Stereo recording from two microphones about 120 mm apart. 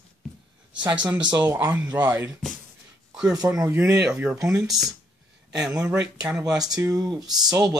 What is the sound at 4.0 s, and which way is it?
Speech, 10° right (ahead or behind).